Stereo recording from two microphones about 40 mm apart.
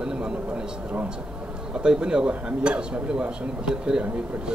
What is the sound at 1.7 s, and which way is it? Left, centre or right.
A man's voice, right.